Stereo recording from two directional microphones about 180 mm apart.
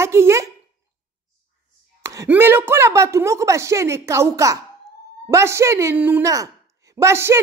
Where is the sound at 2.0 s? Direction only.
15° right (ahead or behind).